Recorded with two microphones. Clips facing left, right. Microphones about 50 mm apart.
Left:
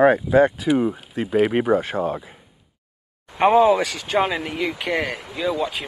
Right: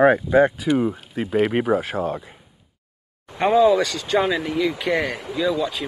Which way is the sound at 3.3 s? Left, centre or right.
Left.